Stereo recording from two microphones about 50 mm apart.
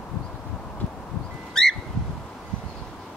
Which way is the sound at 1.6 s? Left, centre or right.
Centre.